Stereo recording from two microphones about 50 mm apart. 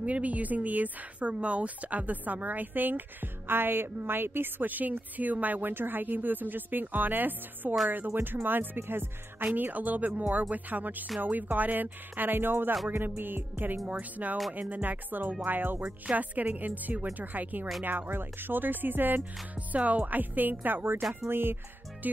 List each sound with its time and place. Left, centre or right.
0.0 s a woman's voice: right
7.9 s music: right
9.6 s a woman's voice: right
12.9 s music: right
13.9 s a woman's voice: right
19.5 s a woman's voice: right
21.3 s music: right
22.0 s a woman's voice: right